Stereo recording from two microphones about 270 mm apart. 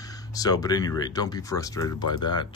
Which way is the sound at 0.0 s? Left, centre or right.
Centre.